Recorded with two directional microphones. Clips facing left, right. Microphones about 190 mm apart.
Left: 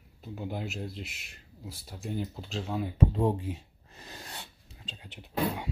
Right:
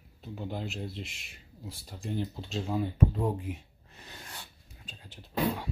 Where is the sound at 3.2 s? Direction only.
30° left (ahead or behind).